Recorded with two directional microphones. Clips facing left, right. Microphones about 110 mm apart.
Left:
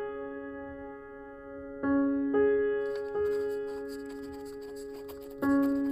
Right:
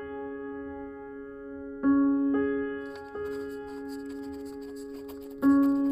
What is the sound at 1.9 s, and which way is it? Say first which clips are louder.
Electric piano: right 1 dB; 20° right (ahead or behind).